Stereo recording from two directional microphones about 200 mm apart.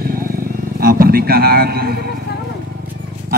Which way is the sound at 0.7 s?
50° right (ahead or behind).